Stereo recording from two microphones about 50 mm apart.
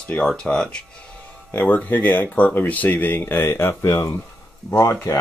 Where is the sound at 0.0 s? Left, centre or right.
Left.